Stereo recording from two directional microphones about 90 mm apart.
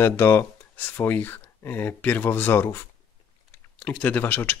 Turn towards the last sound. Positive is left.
turn(degrees=20)  # may be behind; listen again after turning